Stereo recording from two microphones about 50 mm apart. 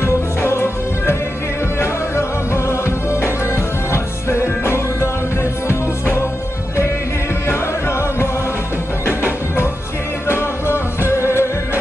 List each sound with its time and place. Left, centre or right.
0.0 s music: left
10.2 s music: left